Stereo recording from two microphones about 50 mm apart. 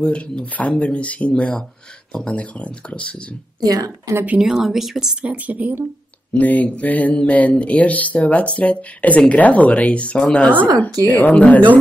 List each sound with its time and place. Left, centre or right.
0.0 s speech: left
4.1 s a woman's voice: right
4.4 s speech: centre
5.1 s speech: right
6.3 s speech: left